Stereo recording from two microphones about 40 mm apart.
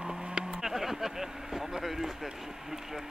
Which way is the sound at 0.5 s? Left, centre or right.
Centre.